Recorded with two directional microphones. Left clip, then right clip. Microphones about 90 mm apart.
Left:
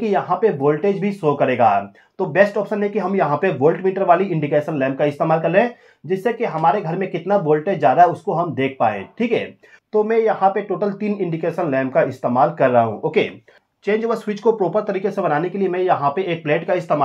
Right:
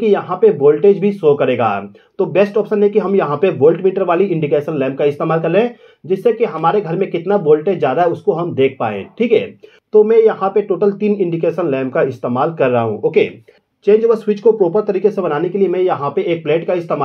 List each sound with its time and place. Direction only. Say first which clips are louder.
0.0 s speech: right 5 dB; 20° right (ahead or behind)